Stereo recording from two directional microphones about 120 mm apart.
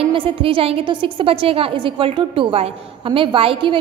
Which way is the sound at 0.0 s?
45° right (ahead or behind).